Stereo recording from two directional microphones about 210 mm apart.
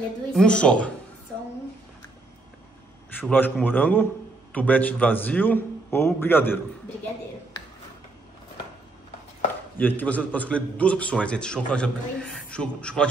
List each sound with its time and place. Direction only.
0.3 s a man's voice: 5° left (ahead or behind)
3.2 s a man's voice: 10° left (ahead or behind)
9.8 s a man's voice: 10° left (ahead or behind)